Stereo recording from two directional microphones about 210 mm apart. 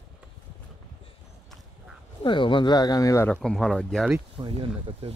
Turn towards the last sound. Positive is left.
turn(degrees=-25)  # may be behind; listen again after turning